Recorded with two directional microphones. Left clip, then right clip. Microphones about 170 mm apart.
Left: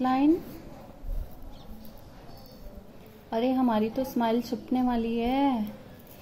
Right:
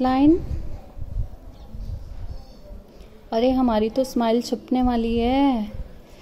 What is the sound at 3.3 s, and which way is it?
A woman's voice, 45° right (ahead or behind).